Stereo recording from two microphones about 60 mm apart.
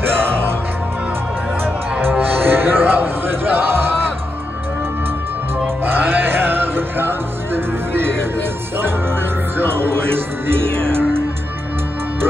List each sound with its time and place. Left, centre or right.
1.6 s music: right
5.9 s music: right